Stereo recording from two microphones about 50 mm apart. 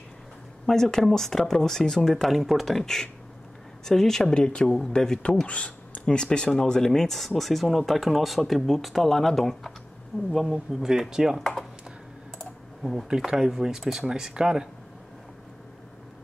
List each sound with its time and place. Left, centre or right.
0.7 s speech: centre
4.3 s speech: centre
4.6 s speech: centre
10.3 s speech: centre
12.8 s speech: centre